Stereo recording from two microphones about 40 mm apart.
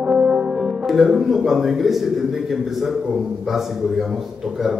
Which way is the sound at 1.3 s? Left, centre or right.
Centre.